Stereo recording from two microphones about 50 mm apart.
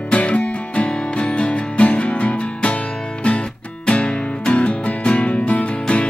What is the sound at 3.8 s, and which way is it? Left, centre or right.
Music, left.